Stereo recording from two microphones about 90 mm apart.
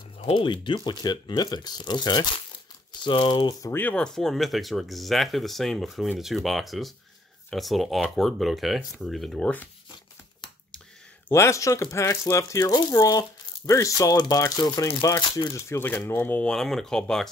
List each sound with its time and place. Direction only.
0.3 s speech: 60° left (ahead or behind)
3.0 s speech: 65° left (ahead or behind)
3.7 s speech: 20° left (ahead or behind)
4.0 s speech: 5° left (ahead or behind)
11.2 s speech: 30° left (ahead or behind)
15.5 s speech: 25° left (ahead or behind)
16.4 s speech: 5° left (ahead or behind)